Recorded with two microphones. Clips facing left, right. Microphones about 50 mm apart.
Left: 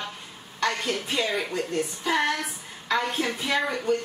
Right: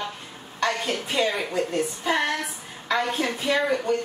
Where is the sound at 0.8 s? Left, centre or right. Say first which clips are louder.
Right 3 dB; centre.